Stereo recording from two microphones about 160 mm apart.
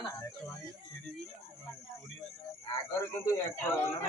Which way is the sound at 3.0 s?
15° left (ahead or behind).